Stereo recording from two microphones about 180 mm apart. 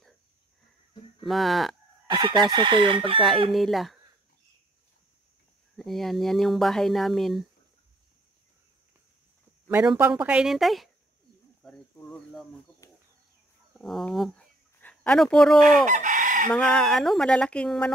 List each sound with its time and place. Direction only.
1.2 s speech: centre (ahead or behind)
2.0 s chicken: 25° right (ahead or behind)
3.5 s speech: centre (ahead or behind)
5.8 s speech: centre (ahead or behind)
9.7 s speech: 10° right (ahead or behind)
12.8 s a sound: 15° left (ahead or behind)
13.7 s a sound: centre (ahead or behind)
15.9 s chicken: 45° right (ahead or behind)
16.4 s speech: 5° left (ahead or behind)